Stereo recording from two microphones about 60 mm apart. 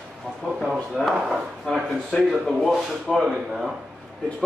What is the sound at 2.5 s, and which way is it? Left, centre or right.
Speech, centre.